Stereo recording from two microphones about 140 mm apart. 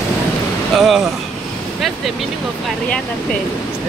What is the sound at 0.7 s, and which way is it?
Vehicle, centre (ahead or behind).